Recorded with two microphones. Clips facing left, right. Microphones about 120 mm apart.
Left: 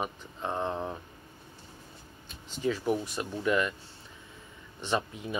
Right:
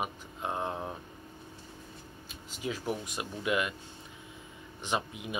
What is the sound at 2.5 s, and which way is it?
Speech, 10° right (ahead or behind).